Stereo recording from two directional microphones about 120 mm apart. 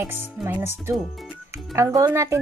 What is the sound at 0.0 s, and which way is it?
Speech, 15° right (ahead or behind).